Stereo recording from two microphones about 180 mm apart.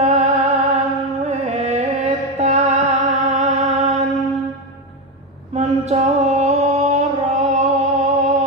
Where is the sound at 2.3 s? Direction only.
35° right (ahead or behind).